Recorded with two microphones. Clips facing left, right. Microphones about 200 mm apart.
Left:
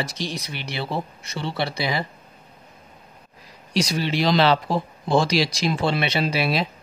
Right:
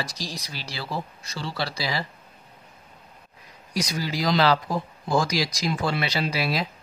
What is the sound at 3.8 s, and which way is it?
Speech, 30° left (ahead or behind).